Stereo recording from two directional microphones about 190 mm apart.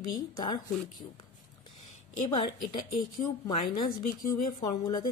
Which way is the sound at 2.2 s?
25° left (ahead or behind).